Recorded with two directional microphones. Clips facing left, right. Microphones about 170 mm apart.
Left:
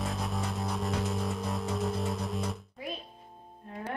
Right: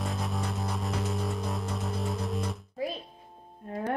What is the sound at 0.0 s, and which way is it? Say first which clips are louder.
Music: right 1 dB; centre (ahead or behind).